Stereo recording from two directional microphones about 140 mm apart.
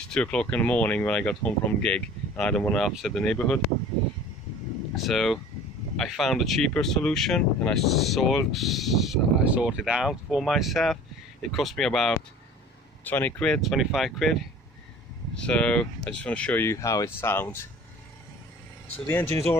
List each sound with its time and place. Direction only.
0.0 s speech: 5° left (ahead or behind)
4.9 s speech: centre (ahead or behind); by 17.6 s 15° left (ahead or behind)
19.0 s speech: 15° left (ahead or behind)